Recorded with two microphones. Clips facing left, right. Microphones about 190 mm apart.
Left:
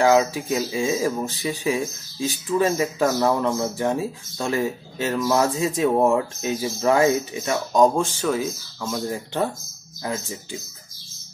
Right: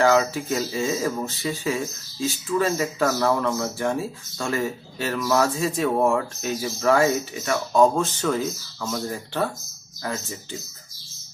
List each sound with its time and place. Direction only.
0.0 s speech: 15° left (ahead or behind)